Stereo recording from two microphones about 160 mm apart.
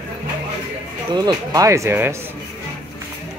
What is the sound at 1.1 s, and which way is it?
Speech, 25° right (ahead or behind).